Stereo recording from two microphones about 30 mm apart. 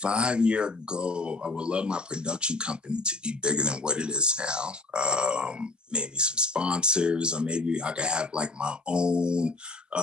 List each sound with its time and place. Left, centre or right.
0.0 s speech: right